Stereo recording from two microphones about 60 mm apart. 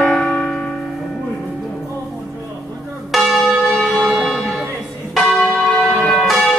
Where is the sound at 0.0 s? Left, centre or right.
Centre.